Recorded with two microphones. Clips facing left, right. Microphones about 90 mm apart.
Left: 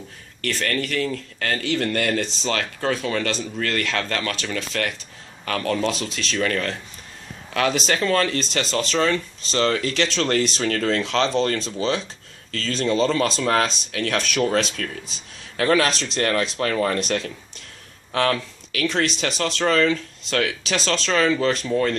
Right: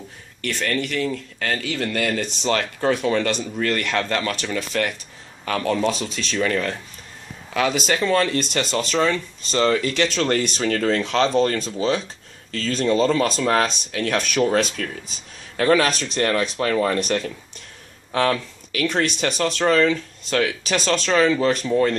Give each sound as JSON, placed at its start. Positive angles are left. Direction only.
{"t": 0.5, "sound": "speech", "side_deg": -10}
{"t": 2.4, "sound": "a man's voice", "side_deg": -15}
{"t": 15.6, "sound": "speech", "side_deg": -10}
{"t": 18.1, "sound": "speech", "side_deg": -15}